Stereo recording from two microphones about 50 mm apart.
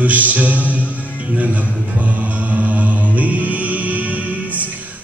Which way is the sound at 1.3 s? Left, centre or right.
Right.